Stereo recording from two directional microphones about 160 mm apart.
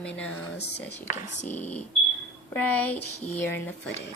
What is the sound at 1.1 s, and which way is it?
Speech, 45° left (ahead or behind).